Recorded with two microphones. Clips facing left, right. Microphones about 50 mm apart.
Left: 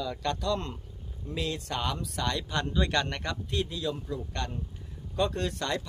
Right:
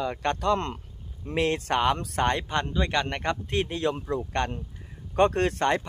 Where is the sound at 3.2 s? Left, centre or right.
Right.